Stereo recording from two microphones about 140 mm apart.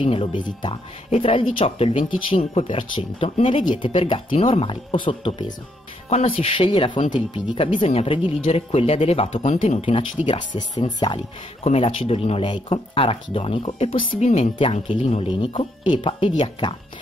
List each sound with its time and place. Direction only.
0.0 s speech: 40° left (ahead or behind)
11.6 s speech: 45° left (ahead or behind)
15.4 s speech: 35° left (ahead or behind)